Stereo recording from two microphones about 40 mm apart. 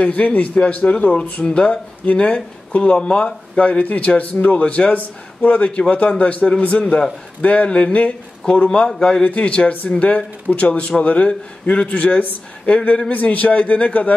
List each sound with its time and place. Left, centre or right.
0.0 s speech: left
1.4 s a man's voice: left
2.1 s a man's voice: left
7.9 s speech: left
8.6 s a man's voice: centre
9.2 s speech: left